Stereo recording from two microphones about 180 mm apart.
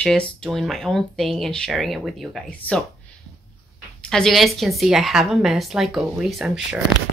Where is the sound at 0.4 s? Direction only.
Centre (ahead or behind).